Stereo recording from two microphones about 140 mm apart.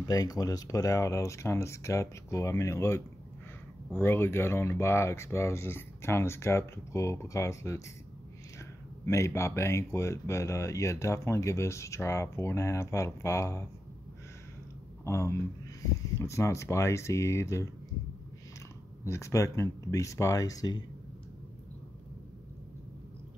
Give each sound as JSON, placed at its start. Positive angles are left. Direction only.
{"t": 0.0, "sound": "speech", "side_deg": 25}
{"t": 15.0, "sound": "speech", "side_deg": 20}
{"t": 19.0, "sound": "speech", "side_deg": 20}